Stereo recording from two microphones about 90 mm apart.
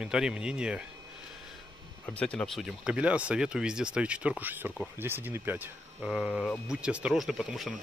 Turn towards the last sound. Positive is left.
turn(degrees=0)  # may be behind; listen again after turning